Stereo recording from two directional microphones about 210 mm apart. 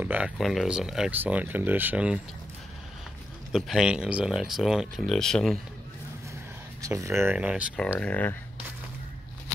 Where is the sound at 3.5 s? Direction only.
Centre (ahead or behind).